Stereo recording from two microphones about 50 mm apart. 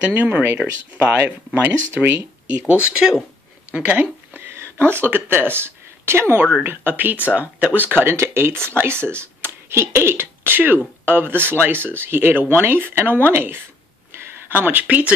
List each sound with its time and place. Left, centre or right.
0.0 s speech: right
2.7 s speech: centre
4.5 s speech: right
6.6 s speech: right